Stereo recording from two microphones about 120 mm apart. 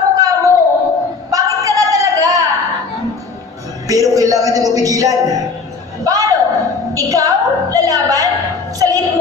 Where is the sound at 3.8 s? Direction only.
30° right (ahead or behind).